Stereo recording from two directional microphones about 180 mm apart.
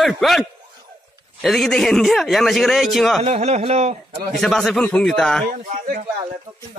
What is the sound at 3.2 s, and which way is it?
Speech, 35° right (ahead or behind).